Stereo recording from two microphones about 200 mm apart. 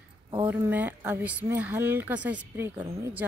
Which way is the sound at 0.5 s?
10° right (ahead or behind).